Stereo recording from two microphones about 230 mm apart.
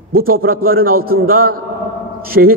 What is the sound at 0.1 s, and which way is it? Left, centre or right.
A man's voice, right.